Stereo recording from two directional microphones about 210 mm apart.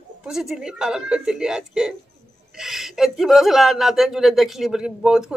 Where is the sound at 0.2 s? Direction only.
Centre (ahead or behind).